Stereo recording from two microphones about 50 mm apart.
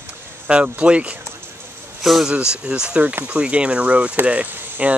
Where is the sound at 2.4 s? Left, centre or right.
Centre.